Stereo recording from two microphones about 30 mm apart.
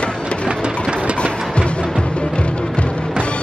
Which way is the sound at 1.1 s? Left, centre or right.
Left.